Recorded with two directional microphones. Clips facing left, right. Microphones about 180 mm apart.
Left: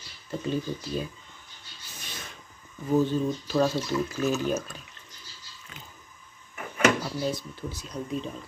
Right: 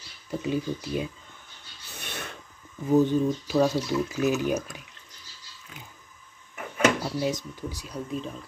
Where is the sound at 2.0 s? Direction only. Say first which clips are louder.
Right 6 dB; 65° right (ahead or behind).